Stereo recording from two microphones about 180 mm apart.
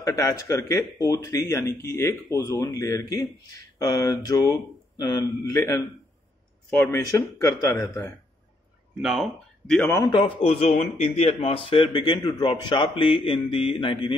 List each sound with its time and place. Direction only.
0.0 s speech: 20° left (ahead or behind)
9.0 s speech: centre (ahead or behind)
9.8 s speech: 15° left (ahead or behind)
10.1 s a man's voice: 30° left (ahead or behind)